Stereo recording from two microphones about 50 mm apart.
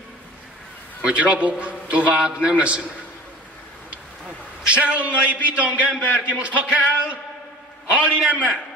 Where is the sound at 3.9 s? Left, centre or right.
Right.